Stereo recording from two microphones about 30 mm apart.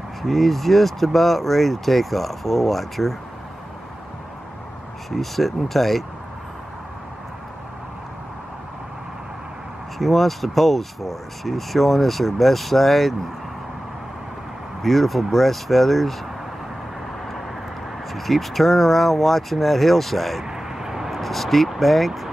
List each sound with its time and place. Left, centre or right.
0.2 s speech: centre
5.1 s speech: centre
9.9 s speech: centre
14.8 s speech: centre
18.1 s speech: centre
20.4 s vehicle: centre
21.2 s speech: centre